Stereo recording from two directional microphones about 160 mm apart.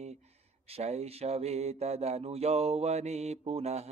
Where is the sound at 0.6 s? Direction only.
40° right (ahead or behind).